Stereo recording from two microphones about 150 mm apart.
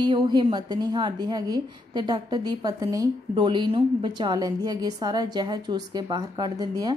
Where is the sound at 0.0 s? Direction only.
30° right (ahead or behind).